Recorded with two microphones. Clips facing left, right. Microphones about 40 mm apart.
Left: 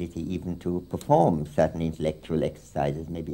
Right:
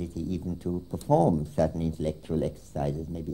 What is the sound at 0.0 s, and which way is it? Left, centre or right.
Speech, left.